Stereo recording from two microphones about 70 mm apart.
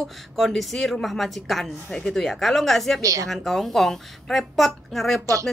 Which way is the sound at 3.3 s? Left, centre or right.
Centre.